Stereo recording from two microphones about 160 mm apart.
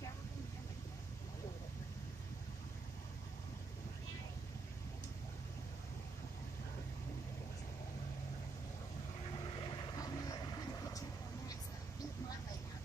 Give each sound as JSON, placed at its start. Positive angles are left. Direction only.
{"t": 9.9, "sound": "vehicle", "side_deg": 25}